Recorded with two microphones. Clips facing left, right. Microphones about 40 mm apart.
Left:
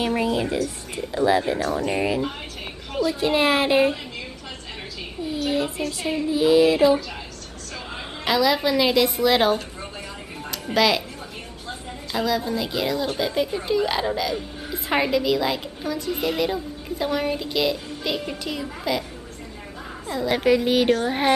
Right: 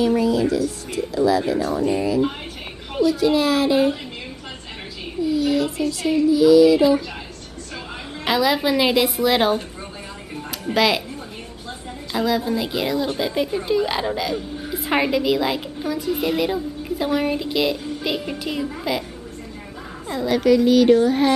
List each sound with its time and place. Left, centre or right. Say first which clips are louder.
0.0 s a woman's voice: right 4 dB; left
5.2 s a woman's voice: right 5 dB; left
8.3 s a woman's voice: right 1 dB; centre
12.1 s speech: right 3 dB; centre
20.2 s speech: right 4 dB; left